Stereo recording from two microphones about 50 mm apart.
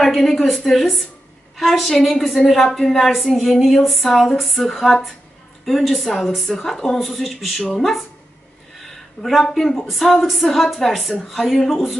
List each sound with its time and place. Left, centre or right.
0.0 s speech: centre
8.8 s a sound: centre
9.4 s speech: centre